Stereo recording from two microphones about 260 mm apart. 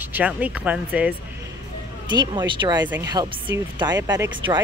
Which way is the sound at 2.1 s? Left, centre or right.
Centre.